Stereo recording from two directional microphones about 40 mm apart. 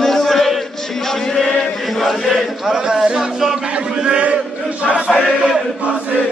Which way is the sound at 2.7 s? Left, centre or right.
Centre.